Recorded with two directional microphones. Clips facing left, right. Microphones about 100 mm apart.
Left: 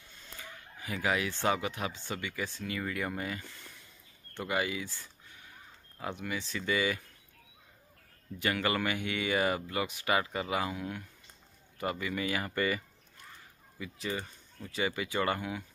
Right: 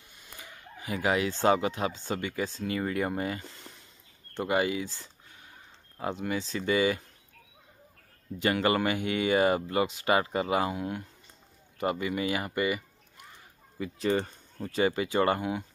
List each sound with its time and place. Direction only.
0.2 s speech: 20° right (ahead or behind)
8.4 s speech: 30° right (ahead or behind)
13.7 s speech: 40° right (ahead or behind)